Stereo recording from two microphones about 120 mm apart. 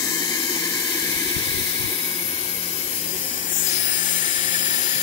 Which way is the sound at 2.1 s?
55° left (ahead or behind).